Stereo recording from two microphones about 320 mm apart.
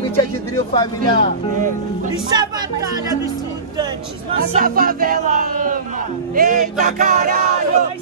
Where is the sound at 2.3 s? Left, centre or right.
Centre.